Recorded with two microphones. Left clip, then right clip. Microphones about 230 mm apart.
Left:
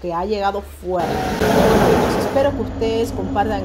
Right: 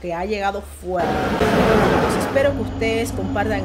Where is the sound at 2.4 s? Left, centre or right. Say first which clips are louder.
Left 1 dB; centre.